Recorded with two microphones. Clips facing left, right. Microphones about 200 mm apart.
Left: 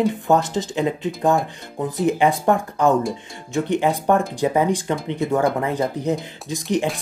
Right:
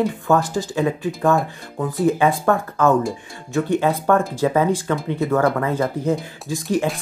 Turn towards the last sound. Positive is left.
turn(degrees=20)  # may be behind; listen again after turning